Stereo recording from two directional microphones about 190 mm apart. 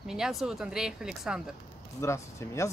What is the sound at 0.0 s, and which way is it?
Speech, 5° right (ahead or behind).